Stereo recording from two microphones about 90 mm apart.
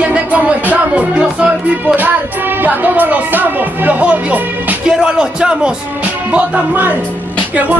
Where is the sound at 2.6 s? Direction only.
20° right (ahead or behind).